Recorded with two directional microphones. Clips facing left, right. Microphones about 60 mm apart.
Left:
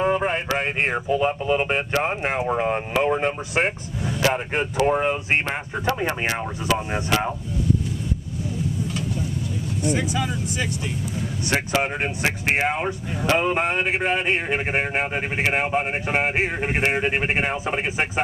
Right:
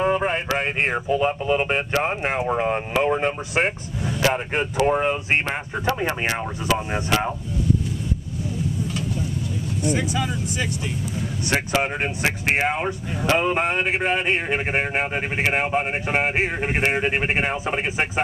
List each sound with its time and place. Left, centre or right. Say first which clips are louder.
0.0 s a sound: even; right
0.6 s speech: even; right
9.9 s speech: even; centre
11.8 s speech: even; right
14.4 s speech: even; right